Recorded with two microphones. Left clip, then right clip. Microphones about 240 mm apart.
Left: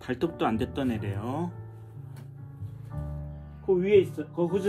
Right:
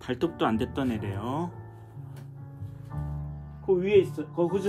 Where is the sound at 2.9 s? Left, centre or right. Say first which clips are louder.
Right 1 dB; right.